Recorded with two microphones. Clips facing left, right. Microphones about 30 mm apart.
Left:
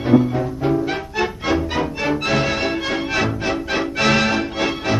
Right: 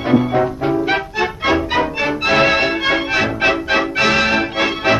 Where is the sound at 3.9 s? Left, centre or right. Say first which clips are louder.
Even; centre.